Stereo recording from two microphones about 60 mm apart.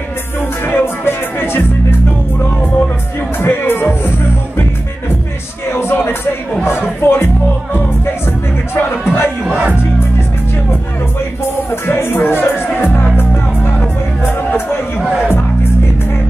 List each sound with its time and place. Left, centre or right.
0.7 s music: left
3.3 s music: left
5.7 s music: left
8.7 s music: left
11.7 s music: left